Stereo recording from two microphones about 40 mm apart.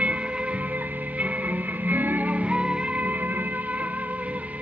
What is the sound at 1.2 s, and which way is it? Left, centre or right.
Music, right.